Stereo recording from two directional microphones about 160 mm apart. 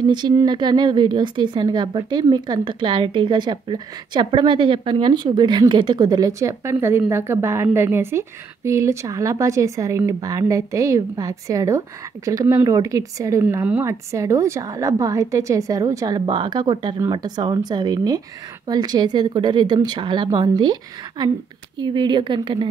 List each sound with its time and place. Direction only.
0.1 s a woman's voice: 25° right (ahead or behind)